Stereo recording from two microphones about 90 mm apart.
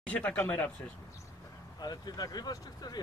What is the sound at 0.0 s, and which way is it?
Speech, 15° left (ahead or behind).